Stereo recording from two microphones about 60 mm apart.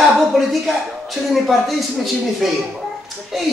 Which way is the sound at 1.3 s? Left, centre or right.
Centre.